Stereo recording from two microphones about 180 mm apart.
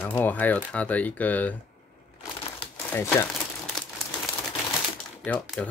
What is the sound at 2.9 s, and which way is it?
Speech, 15° left (ahead or behind).